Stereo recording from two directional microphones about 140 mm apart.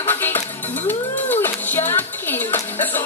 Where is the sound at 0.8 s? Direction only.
15° left (ahead or behind).